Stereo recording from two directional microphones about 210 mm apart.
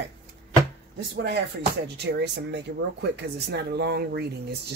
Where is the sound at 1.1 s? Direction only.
55° right (ahead or behind).